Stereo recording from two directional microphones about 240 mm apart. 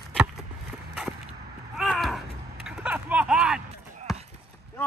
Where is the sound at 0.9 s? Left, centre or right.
Centre.